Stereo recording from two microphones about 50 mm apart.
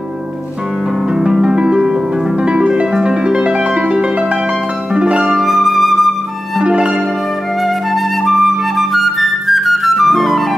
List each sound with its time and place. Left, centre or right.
1.1 s music: centre
2.4 s harp: centre
4.9 s music: centre
5.2 s flute: centre
6.6 s music: centre
7.6 s flute: centre